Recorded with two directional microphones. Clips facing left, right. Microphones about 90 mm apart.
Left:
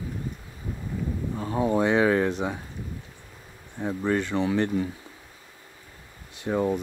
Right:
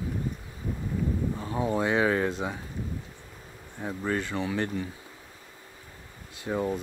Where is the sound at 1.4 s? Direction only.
25° left (ahead or behind).